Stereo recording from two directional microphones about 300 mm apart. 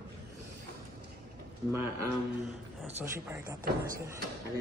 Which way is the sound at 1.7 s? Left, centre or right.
Centre.